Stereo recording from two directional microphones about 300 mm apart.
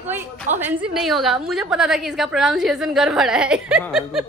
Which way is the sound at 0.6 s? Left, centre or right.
Centre.